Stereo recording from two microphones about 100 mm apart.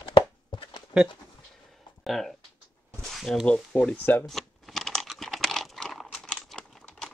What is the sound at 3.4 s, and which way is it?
Speech, 10° left (ahead or behind).